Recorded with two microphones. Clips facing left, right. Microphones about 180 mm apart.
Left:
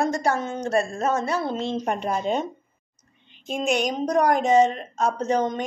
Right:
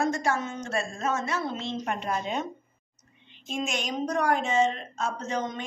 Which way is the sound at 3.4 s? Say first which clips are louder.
Left 8 dB; 60° left (ahead or behind).